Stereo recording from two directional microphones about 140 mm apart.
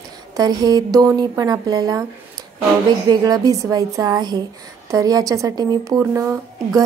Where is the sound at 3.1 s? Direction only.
25° right (ahead or behind).